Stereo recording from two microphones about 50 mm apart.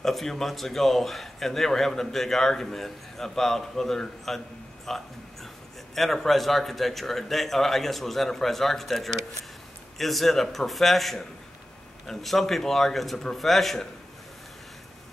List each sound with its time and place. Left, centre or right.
0.0 s speech: centre
4.8 s music: centre
5.9 s speech: centre